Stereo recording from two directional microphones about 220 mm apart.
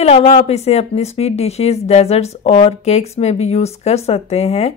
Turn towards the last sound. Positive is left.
turn(degrees=30)  # may be behind; listen again after turning